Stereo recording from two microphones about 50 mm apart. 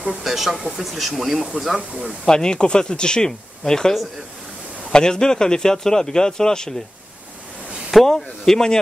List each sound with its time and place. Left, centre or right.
0.2 s speech: centre
1.8 s speech: centre
2.2 s speech: centre
4.9 s speech: centre
7.9 s speech: centre